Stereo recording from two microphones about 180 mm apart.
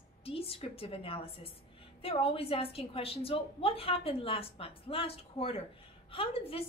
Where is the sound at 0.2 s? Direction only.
30° left (ahead or behind).